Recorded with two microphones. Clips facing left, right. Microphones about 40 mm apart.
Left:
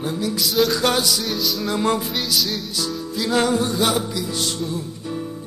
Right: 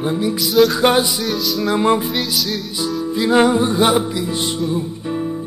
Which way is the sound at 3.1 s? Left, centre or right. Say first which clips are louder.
Right 6 dB; right.